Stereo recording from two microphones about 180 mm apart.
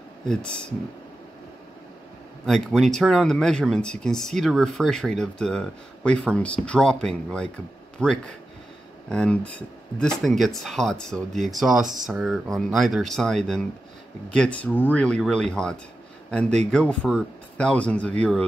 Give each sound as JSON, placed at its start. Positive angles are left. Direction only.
{"t": 0.3, "sound": "speech", "side_deg": 5}
{"t": 2.4, "sound": "speech", "side_deg": 0}